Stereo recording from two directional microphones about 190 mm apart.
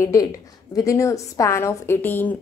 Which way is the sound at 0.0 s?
15° left (ahead or behind).